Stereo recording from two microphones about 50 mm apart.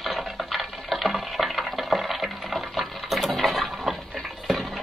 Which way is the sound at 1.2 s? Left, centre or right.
Centre.